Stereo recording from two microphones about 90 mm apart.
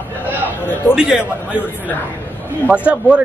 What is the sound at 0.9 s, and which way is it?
Speech, 10° right (ahead or behind).